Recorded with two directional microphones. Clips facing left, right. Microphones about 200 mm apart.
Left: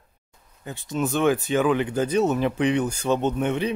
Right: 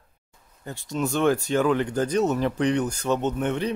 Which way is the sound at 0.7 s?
5° left (ahead or behind).